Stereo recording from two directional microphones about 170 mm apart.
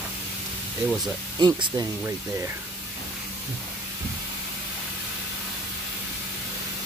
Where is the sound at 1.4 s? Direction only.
25° right (ahead or behind).